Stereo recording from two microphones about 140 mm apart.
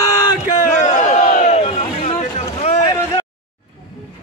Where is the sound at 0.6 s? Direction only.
55° left (ahead or behind).